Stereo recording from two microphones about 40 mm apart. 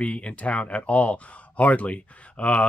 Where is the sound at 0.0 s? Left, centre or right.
Left.